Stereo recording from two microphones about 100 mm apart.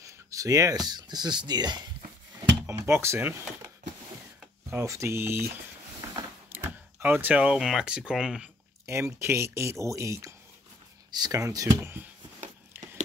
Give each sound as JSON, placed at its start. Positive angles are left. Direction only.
{"t": 0.0, "sound": "speech", "side_deg": -35}
{"t": 2.6, "sound": "speech", "side_deg": -25}
{"t": 4.7, "sound": "speech", "side_deg": -30}
{"t": 6.5, "sound": "speech", "side_deg": -20}
{"t": 8.8, "sound": "speech", "side_deg": -30}
{"t": 11.1, "sound": "speech", "side_deg": -45}
{"t": 12.7, "sound": "a sound", "side_deg": -25}